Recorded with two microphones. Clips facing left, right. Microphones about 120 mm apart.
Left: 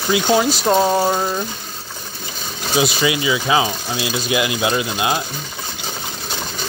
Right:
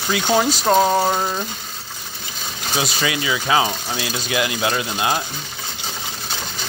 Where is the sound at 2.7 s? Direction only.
20° left (ahead or behind).